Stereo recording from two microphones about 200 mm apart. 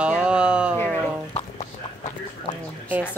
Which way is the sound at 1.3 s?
35° left (ahead or behind).